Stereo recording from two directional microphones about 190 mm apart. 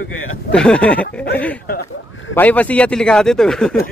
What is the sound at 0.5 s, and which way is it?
Speech, 5° left (ahead or behind).